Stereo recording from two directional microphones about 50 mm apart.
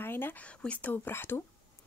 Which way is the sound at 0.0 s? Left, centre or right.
Left.